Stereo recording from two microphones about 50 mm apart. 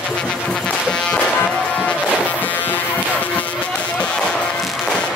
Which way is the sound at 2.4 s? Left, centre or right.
Left.